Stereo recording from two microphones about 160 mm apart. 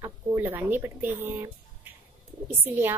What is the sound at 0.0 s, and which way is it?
A woman's voice, 15° right (ahead or behind).